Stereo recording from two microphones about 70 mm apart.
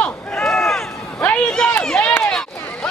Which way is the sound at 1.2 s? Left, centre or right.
Left.